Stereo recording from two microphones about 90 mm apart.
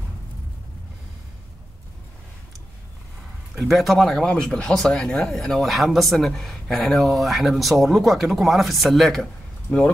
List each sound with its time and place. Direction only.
3.5 s speech: centre (ahead or behind)
9.7 s speech: 15° left (ahead or behind)